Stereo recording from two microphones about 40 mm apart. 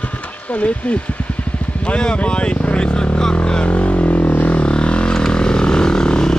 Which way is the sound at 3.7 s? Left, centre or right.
Left.